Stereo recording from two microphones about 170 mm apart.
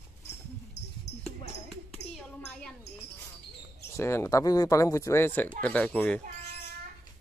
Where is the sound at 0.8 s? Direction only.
90° left.